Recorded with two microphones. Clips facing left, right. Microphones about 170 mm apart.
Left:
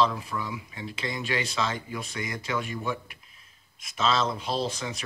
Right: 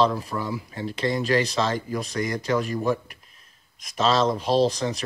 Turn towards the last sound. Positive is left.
turn(degrees=-35)  # may be behind; listen again after turning